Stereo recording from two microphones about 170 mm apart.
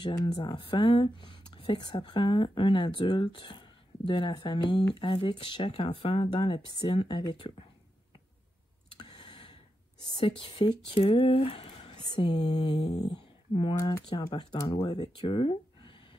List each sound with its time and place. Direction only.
0.0 s speech: 25° left (ahead or behind)
8.9 s a sound: 25° left (ahead or behind)
10.2 s speech: 30° left (ahead or behind)
12.2 s speech: 25° left (ahead or behind)